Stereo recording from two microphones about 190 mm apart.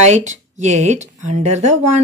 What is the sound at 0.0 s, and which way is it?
Speech, 35° right (ahead or behind).